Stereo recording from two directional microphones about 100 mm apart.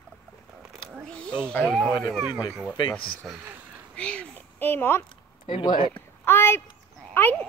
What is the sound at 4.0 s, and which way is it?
A woman's voice, 10° left (ahead or behind).